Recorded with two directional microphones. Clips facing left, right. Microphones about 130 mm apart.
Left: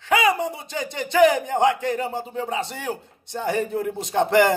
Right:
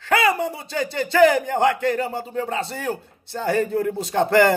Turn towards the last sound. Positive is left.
turn(degrees=20)  # may be behind; listen again after turning